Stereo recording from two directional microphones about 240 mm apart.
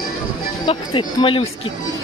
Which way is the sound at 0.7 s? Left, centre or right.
Left.